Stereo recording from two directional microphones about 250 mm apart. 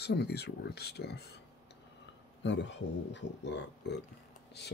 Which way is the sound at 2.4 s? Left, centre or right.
Left.